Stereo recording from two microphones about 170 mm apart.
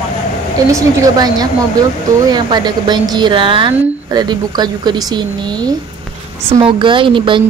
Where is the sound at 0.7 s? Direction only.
20° right (ahead or behind).